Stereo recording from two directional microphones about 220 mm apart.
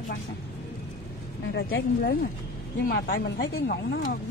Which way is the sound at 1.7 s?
60° left (ahead or behind).